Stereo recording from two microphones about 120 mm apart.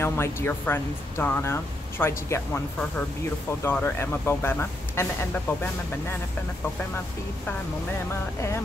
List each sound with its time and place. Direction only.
0.0 s speech: 20° left (ahead or behind)
3.6 s speech: 20° left (ahead or behind)
8.1 s speech: 20° left (ahead or behind)